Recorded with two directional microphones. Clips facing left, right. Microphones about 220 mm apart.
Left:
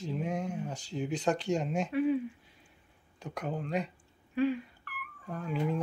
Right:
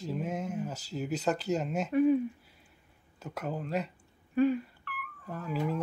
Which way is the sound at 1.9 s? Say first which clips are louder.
Right 5 dB; 45° right (ahead or behind).